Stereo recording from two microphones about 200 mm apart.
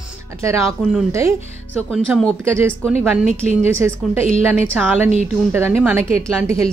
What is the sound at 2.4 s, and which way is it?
Speech, 10° right (ahead or behind).